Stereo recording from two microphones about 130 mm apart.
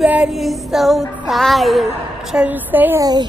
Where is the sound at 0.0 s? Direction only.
5° right (ahead or behind).